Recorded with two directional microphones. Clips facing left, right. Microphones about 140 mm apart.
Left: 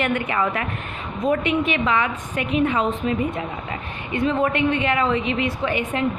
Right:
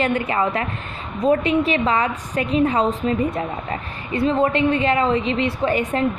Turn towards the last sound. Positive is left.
turn(degrees=-35)  # may be behind; listen again after turning